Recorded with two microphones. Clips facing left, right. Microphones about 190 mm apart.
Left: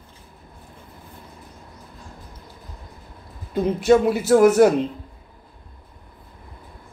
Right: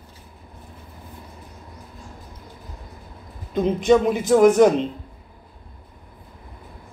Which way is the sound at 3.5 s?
5° left (ahead or behind).